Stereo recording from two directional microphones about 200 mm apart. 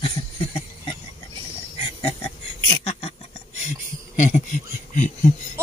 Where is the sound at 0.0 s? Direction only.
25° left (ahead or behind).